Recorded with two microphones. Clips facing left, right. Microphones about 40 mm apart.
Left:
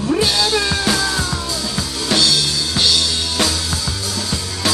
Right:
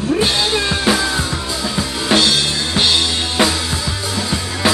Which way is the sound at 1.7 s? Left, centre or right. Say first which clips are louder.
Right 4 dB; right.